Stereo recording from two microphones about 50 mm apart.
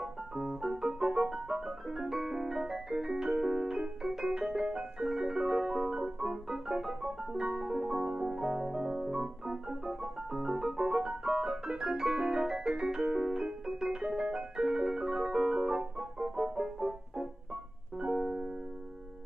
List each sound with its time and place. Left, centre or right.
0.0 s piano: centre
17.9 s keyboard: centre